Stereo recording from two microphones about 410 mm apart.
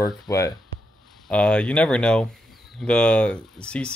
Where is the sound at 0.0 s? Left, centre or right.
Centre.